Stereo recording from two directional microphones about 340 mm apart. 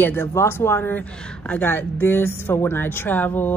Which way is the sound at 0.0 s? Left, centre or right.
Centre.